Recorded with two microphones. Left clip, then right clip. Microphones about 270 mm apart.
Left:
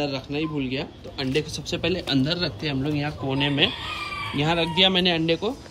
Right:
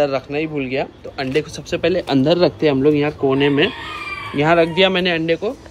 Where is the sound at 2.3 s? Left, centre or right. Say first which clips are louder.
Right 12 dB; centre.